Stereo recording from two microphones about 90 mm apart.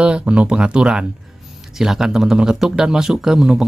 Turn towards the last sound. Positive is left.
turn(degrees=-5)  # may be behind; listen again after turning